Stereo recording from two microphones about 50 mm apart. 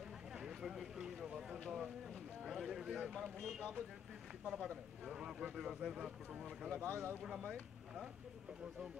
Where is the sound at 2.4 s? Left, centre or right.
Centre.